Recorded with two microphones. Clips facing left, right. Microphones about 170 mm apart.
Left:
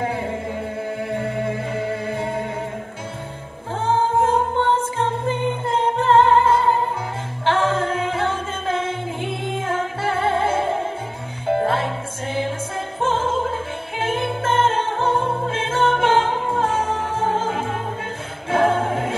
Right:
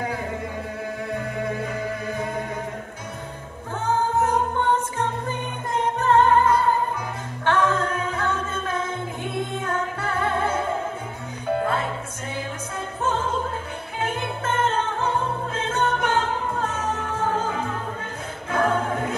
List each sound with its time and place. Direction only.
0.0 s music: 30° left (ahead or behind)
3.8 s music: 30° left (ahead or behind)
13.0 s music: 25° left (ahead or behind)